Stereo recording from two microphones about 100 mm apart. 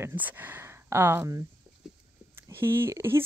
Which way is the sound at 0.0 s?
15° right (ahead or behind).